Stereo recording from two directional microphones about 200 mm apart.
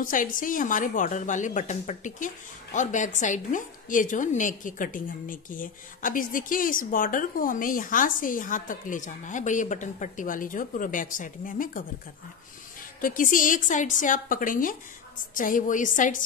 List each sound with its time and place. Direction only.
0.0 s a woman's voice: 40° left (ahead or behind)
13.0 s a woman's voice: 45° left (ahead or behind)